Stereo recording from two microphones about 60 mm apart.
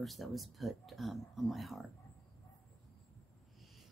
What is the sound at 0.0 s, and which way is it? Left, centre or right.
Speech, centre.